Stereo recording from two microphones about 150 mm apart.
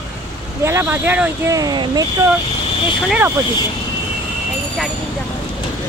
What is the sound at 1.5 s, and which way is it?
Speech, 25° right (ahead or behind).